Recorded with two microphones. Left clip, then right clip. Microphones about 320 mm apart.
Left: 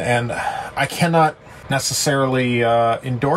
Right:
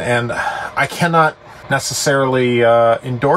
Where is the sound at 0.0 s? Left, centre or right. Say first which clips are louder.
Right 3 dB; centre.